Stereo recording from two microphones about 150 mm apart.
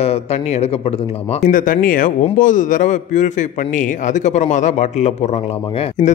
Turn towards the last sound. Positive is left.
turn(degrees=50)  # may be behind; listen again after turning